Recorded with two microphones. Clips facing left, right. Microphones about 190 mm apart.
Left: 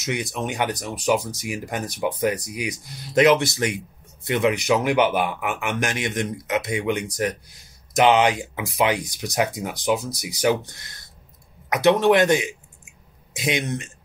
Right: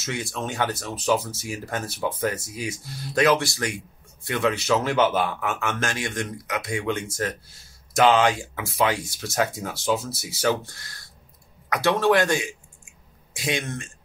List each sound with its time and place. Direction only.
0.0 s speech: 15° left (ahead or behind)